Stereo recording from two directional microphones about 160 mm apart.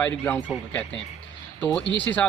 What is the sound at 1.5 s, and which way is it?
Speech, 10° left (ahead or behind).